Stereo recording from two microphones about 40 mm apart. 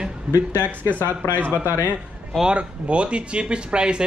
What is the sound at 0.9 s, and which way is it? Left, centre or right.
Speech, right.